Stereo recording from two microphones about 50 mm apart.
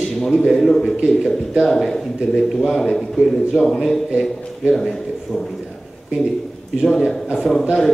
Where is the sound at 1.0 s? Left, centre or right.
Centre.